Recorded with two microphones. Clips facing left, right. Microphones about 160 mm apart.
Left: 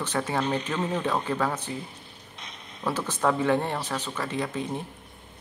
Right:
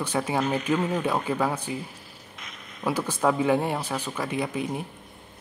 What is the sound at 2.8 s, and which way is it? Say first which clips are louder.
Speech: right 2 dB; 10° right (ahead or behind).